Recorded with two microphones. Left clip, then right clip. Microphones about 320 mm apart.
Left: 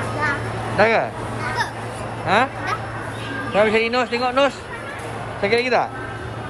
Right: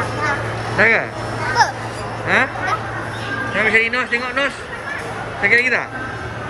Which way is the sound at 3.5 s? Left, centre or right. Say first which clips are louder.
Right 1 dB; centre.